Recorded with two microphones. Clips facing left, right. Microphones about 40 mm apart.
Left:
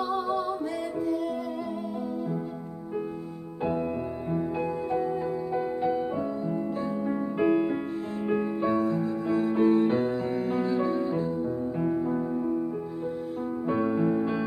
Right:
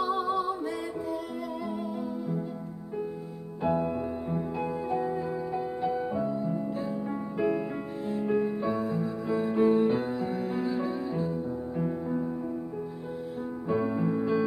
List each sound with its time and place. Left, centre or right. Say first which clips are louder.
0.0 s music: even; centre
3.6 s music: right 1 dB; centre
6.1 s music: even; centre
7.3 s music: left 4 dB; left
8.8 s music: left 3 dB; centre
13.7 s music: left 2 dB; centre